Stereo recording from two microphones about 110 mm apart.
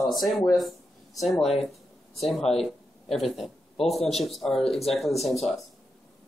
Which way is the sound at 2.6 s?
5° left (ahead or behind).